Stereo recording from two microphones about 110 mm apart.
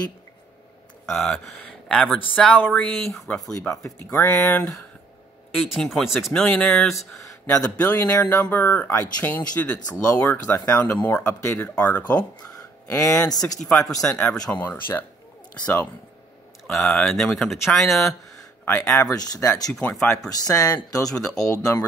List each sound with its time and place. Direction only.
1.0 s speech: 10° left (ahead or behind)
3.8 s speech: 20° left (ahead or behind)
5.8 s speech: centre (ahead or behind)
10.1 s speech: 30° left (ahead or behind)
12.9 s speech: 30° left (ahead or behind)
13.4 s speech: 5° left (ahead or behind)
16.6 s speech: 5° left (ahead or behind)
19.1 s speech: 30° left (ahead or behind)
19.7 s speech: 10° left (ahead or behind)
20.1 s speech: 35° left (ahead or behind)